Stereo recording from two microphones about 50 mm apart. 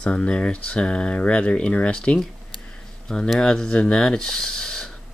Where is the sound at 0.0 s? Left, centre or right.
Left.